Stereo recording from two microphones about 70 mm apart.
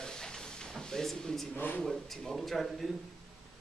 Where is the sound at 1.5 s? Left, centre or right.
Left.